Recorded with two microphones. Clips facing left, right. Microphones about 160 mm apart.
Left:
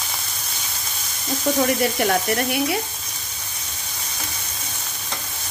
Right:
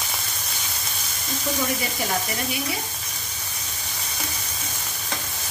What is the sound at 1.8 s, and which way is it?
Speech, 60° left (ahead or behind).